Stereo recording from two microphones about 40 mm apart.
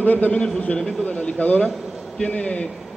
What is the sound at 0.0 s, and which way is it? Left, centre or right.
Speech, left.